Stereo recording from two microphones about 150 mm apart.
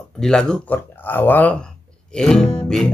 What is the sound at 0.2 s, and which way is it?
Speech, 5° left (ahead or behind).